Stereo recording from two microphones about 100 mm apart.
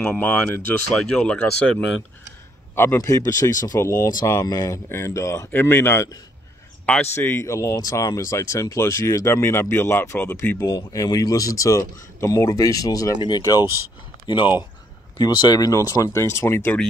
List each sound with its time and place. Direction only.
0.5 s speech: 20° left (ahead or behind)
2.7 s a man's voice: 25° left (ahead or behind)
3.0 s speech: 35° left (ahead or behind)
4.8 s speech: 25° left (ahead or behind)
7.2 s speech: 25° left (ahead or behind)
10.7 s speech: 35° left (ahead or behind)
14.2 s speech: 50° left (ahead or behind); by 16.7 s 25° left (ahead or behind)